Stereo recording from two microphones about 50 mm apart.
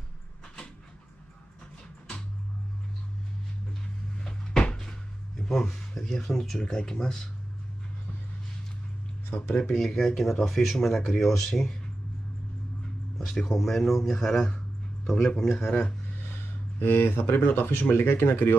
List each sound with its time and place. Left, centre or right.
4.2 s cupboard open or close: centre
5.6 s a man's voice: centre
6.6 s speech: centre
9.7 s a man's voice: centre
13.2 s a man's voice: centre
16.8 s speech: left